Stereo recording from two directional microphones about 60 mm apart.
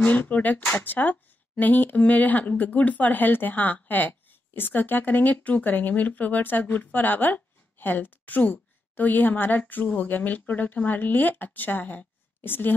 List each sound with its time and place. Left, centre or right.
0.0 s a woman's voice: left